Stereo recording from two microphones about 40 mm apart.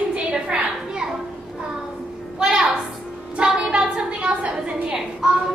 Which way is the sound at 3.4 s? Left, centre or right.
Right.